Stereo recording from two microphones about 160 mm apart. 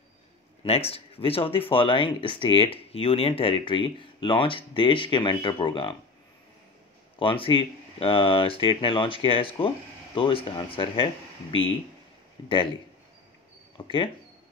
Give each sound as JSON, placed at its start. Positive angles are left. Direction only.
{"t": 0.7, "sound": "speech", "side_deg": 40}
{"t": 7.2, "sound": "speech", "side_deg": 30}
{"t": 12.4, "sound": "speech", "side_deg": 30}